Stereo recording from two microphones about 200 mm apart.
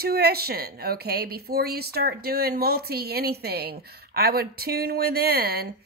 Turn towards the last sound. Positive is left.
turn(degrees=-50)  # may be behind; listen again after turning